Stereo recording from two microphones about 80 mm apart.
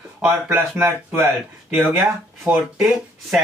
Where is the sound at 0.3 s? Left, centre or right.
Right.